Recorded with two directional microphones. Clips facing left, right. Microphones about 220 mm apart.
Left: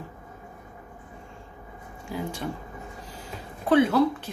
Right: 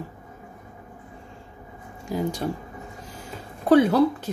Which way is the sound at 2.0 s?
40° right (ahead or behind).